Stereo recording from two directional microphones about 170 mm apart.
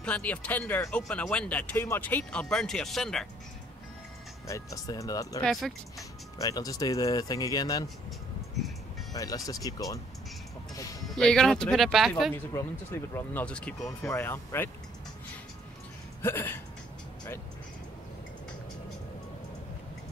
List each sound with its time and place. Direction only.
0.0 s speech: 10° left (ahead or behind)
4.5 s speech: 20° left (ahead or behind)
5.4 s speech: centre (ahead or behind)
6.3 s speech: 20° left (ahead or behind)
9.1 s speech: 20° left (ahead or behind)
11.1 s speech: 5° left (ahead or behind)
12.4 s speech: 15° left (ahead or behind)
16.2 s hiccup: 15° left (ahead or behind)